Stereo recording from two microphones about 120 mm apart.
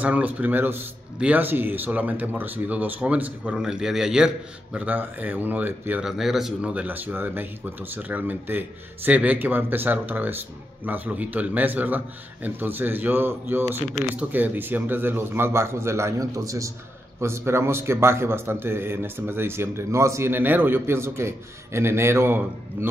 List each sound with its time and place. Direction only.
0.0 s speech: 15° right (ahead or behind)
6.0 s a man's voice: 5° right (ahead or behind); by 22.8 s 20° right (ahead or behind)